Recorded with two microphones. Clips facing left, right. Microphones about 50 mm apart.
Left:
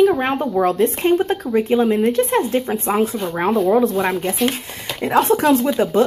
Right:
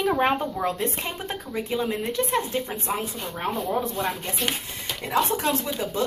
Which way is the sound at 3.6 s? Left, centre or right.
Left.